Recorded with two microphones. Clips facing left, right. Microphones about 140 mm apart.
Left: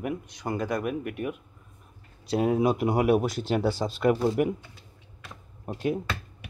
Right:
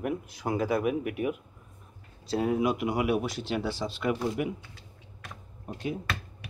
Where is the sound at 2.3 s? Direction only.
20° left (ahead or behind).